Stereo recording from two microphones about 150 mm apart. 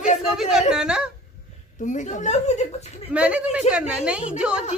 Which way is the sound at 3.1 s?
10° right (ahead or behind).